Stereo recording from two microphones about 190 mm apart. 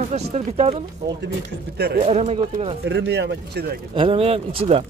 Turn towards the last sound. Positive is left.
turn(degrees=-30)  # may be behind; listen again after turning